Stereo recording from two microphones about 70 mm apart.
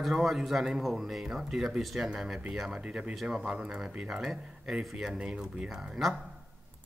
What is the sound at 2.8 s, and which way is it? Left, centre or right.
Speech, centre.